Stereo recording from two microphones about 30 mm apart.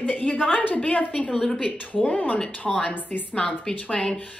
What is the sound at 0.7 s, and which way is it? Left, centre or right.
A woman's voice, left.